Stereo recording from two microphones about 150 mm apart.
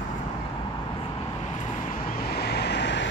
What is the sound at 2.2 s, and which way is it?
Vehicle, 90° left.